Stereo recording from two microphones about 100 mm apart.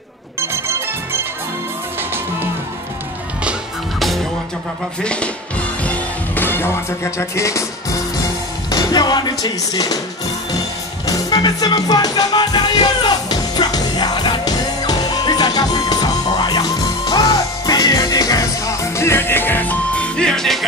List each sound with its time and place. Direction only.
5.0 s speech: 10° left (ahead or behind)
5.9 s music: 20° left (ahead or behind)
8.6 s music: 45° left (ahead or behind)
11.1 s music: 40° left (ahead or behind); by 20.6 s 5° left (ahead or behind)